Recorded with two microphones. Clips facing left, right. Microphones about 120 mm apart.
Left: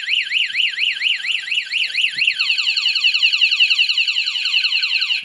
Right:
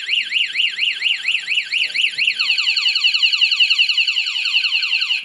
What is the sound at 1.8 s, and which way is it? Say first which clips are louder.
Car alarm: even; 35° right (ahead or behind).